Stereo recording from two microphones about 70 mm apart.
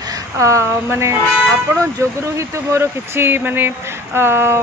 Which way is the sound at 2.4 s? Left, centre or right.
Right.